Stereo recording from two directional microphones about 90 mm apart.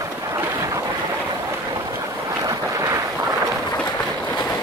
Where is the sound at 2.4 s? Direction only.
40° right (ahead or behind).